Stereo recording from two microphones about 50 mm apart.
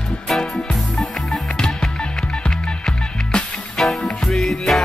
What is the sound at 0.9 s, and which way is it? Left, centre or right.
Music, centre.